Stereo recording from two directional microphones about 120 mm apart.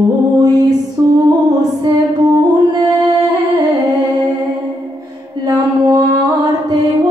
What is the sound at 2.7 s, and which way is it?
Music, 30° right (ahead or behind).